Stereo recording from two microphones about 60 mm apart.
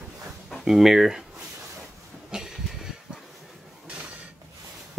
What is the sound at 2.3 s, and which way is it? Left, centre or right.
Vehicle, centre.